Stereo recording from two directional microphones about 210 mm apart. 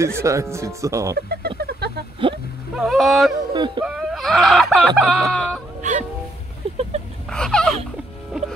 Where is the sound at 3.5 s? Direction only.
20° right (ahead or behind).